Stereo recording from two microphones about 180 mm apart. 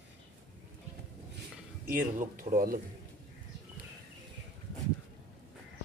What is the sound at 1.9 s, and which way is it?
Speech, 50° right (ahead or behind).